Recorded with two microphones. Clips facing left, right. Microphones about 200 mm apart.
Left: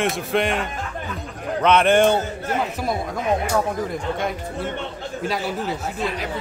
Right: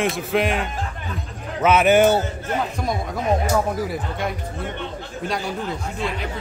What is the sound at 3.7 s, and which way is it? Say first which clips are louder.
A man's voice: left 1 dB; 5° right (ahead or behind).